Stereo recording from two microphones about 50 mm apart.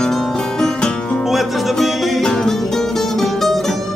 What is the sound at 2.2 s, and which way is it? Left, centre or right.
Music, centre.